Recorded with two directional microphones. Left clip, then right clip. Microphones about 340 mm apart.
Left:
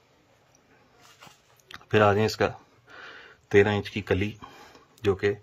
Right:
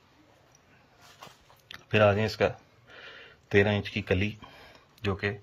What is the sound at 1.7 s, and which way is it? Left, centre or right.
Speech, centre.